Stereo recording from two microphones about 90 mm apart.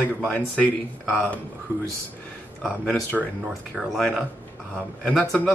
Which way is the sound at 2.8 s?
5° left (ahead or behind).